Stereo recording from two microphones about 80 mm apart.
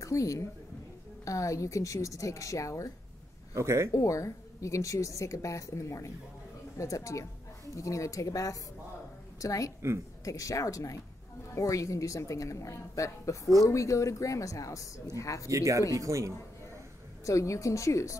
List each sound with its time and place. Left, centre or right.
0.0 s a woman's voice: left
3.5 s speech: right
3.9 s a woman's voice: left
15.5 s speech: right
17.2 s a woman's voice: left